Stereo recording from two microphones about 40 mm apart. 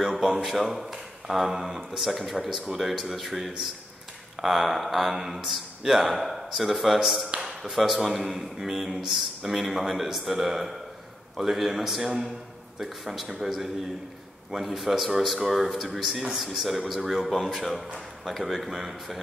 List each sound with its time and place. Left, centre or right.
0.0 s speech: centre